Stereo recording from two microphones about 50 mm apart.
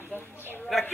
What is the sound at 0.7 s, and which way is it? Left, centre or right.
Speech, centre.